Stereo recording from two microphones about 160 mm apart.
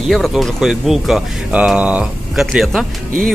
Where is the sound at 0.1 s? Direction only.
Centre (ahead or behind).